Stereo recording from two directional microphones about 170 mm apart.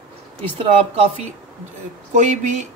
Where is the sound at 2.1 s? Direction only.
45° right (ahead or behind).